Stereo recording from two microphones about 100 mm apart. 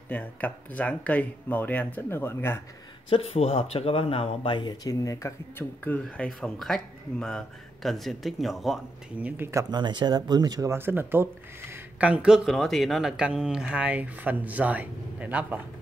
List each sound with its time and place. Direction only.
0.1 s speech: 15° left (ahead or behind)
3.1 s speech: 90° left; by 4.7 s 55° left (ahead or behind)
4.8 s speech: 35° left (ahead or behind)
5.9 s speech: 10° left (ahead or behind)
9.7 s speech: 45° right (ahead or behind)
10.7 s speech: 20° right (ahead or behind)
11.7 s a sound: 10° right (ahead or behind)
12.4 s speech: centre (ahead or behind); by 15.6 s 15° right (ahead or behind)